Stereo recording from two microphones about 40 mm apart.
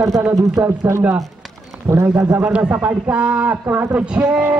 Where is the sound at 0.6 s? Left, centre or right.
Right.